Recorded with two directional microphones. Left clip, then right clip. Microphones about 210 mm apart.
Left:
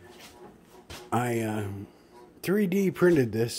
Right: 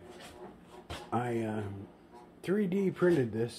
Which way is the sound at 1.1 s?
45° left (ahead or behind).